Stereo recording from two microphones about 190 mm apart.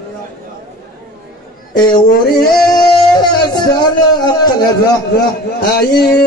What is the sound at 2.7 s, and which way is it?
Music, 20° left (ahead or behind).